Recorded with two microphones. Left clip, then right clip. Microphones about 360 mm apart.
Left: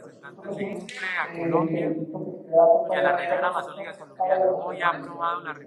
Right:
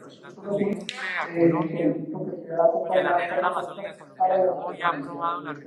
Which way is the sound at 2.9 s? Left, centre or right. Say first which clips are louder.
Even; centre.